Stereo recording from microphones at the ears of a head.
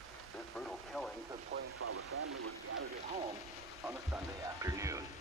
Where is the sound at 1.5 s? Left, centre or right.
Right.